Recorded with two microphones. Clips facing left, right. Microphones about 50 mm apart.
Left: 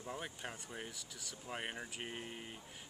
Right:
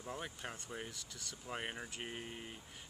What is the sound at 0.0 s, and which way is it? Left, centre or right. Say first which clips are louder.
Speech: even; centre.